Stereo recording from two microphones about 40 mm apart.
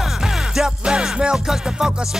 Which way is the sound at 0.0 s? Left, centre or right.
Centre.